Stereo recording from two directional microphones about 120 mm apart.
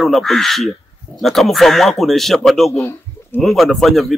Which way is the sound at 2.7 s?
20° left (ahead or behind).